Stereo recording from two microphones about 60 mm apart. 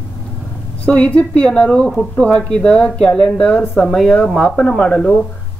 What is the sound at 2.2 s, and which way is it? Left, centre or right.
Speech, centre.